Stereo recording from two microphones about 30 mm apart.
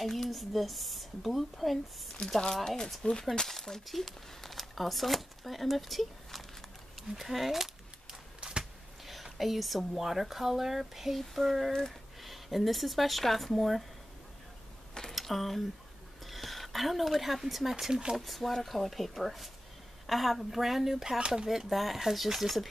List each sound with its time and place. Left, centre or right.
0.0 s speech: centre
2.5 s speech: centre
7.2 s a sound: centre
8.4 s a sound: right
9.4 s speech: centre
15.1 s speech: centre
18.1 s speech: centre
21.2 s speech: right
21.6 s speech: centre